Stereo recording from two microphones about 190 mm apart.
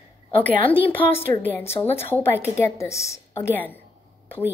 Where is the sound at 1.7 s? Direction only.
30° left (ahead or behind).